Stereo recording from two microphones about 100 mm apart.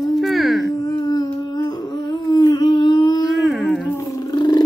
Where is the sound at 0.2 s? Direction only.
Centre (ahead or behind).